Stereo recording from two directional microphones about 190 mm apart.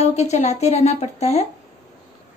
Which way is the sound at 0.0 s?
35° left (ahead or behind).